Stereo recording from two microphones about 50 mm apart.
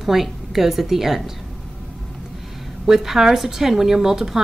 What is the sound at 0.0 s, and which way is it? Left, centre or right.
A woman's voice, centre.